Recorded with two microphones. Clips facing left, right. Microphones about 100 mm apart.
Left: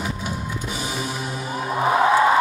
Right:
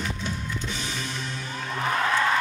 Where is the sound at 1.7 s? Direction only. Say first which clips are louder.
Left 8 dB; 20° left (ahead or behind).